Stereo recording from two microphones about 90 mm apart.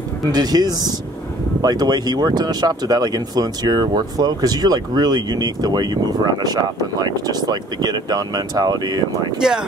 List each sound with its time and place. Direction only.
0.2 s speech: 50° right (ahead or behind)
9.4 s speech: 10° right (ahead or behind)